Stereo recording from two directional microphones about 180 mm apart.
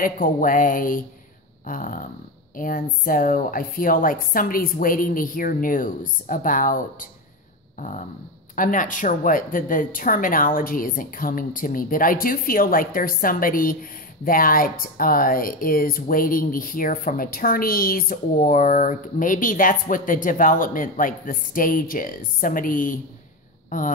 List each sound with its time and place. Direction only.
0.0 s speech: 50° left (ahead or behind)
8.5 s speech: 45° left (ahead or behind)